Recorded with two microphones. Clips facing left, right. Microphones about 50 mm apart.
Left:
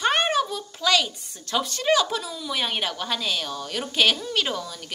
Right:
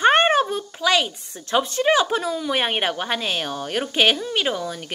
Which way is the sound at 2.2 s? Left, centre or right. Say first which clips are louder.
Right 6 dB; right.